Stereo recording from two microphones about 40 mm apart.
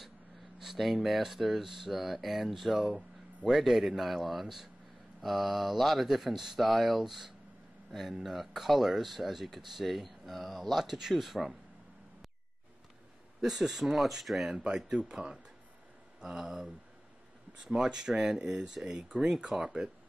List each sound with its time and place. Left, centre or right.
0.6 s speech: centre
6.6 s speech: centre
13.4 s speech: centre
14.5 s speech: right
16.3 s speech: centre
18.9 s speech: right
19.4 s speech: centre